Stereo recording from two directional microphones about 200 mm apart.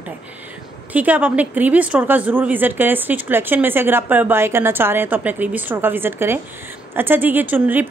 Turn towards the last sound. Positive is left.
turn(degrees=-10)  # may be behind; listen again after turning